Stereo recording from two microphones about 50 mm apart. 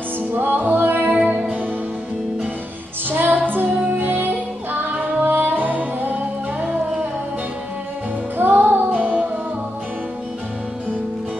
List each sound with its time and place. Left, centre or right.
0.3 s music: right
1.1 s music: right
3.1 s music: right
8.4 s music: right